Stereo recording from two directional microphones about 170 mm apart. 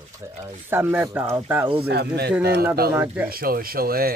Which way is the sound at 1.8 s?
70° right (ahead or behind).